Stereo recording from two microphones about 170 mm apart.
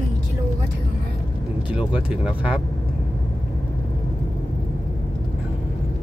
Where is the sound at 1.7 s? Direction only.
5° right (ahead or behind).